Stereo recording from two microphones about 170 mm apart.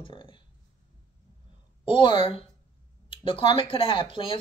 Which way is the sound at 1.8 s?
30° left (ahead or behind).